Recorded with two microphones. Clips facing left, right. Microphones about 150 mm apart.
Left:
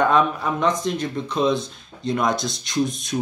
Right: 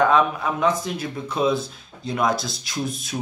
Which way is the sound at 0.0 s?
Centre (ahead or behind).